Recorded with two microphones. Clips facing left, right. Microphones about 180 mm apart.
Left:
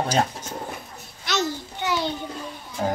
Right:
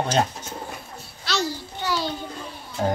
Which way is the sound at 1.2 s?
20° left (ahead or behind).